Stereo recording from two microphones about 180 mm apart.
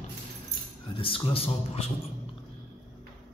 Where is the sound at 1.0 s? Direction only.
30° left (ahead or behind).